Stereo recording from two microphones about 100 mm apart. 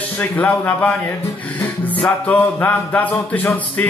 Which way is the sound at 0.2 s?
20° left (ahead or behind).